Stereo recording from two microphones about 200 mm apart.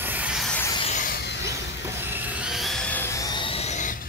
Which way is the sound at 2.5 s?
Centre (ahead or behind).